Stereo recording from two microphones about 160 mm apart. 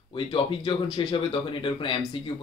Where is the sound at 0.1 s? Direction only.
30° left (ahead or behind).